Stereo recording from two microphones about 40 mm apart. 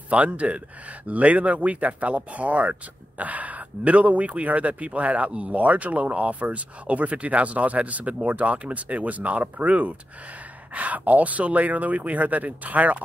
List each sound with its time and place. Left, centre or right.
0.1 s speech: right